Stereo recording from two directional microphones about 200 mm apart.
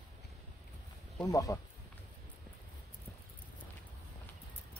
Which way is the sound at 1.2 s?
15° left (ahead or behind).